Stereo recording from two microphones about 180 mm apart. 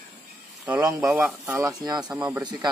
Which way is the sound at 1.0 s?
5° right (ahead or behind).